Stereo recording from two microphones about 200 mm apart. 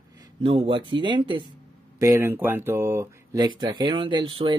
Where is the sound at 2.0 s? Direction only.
10° right (ahead or behind).